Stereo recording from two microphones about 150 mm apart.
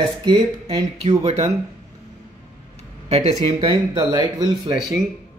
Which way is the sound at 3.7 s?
25° right (ahead or behind).